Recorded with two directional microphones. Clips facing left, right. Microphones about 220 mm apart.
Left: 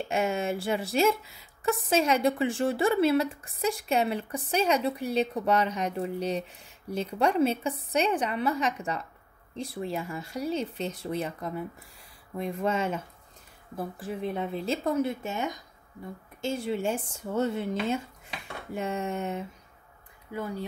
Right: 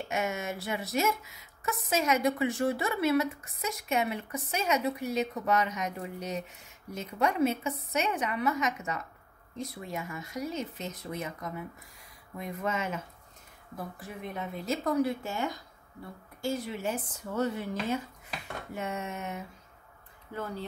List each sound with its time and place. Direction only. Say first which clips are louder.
0.1 s a woman's voice: left 5 dB; 30° left (ahead or behind)
20.3 s speech: left 3 dB; 15° left (ahead or behind)